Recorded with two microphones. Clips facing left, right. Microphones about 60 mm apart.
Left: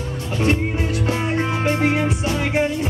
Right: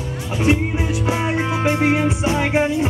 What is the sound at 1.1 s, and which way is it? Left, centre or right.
Music, centre.